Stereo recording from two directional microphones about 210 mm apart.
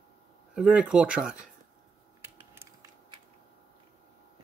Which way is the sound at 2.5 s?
10° right (ahead or behind).